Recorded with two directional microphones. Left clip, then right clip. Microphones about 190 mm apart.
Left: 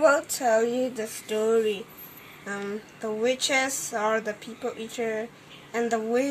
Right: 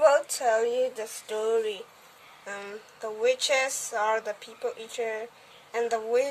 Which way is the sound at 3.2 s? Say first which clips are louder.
Even; 25° right (ahead or behind).